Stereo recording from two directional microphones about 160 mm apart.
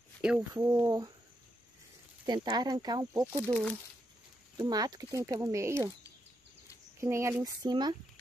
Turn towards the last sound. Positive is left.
turn(degrees=-25)  # may be behind; listen again after turning